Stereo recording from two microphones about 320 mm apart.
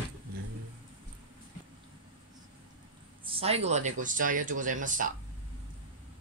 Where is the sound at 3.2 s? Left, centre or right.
Centre.